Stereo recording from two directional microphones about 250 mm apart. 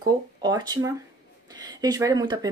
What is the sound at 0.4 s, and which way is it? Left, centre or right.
A woman's voice, centre.